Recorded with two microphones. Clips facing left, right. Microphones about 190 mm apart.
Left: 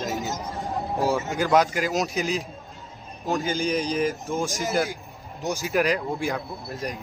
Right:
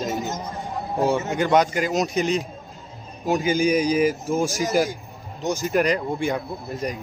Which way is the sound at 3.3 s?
10° right (ahead or behind).